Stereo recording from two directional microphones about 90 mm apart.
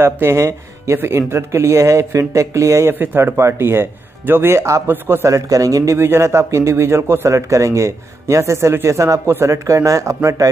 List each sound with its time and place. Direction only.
0.0 s speech: 30° right (ahead or behind)
5.9 s speech: 30° right (ahead or behind)